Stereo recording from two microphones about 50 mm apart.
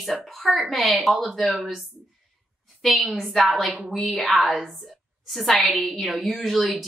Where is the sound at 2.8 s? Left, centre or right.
Centre.